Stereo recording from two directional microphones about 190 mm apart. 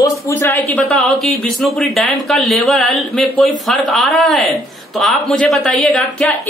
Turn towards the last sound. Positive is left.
turn(degrees=0)  # may be behind; listen again after turning